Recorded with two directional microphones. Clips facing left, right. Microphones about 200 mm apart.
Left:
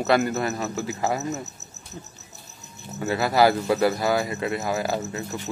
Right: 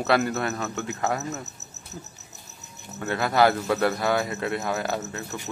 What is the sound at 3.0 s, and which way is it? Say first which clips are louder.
Speech: left 2 dB; 5° left (ahead or behind).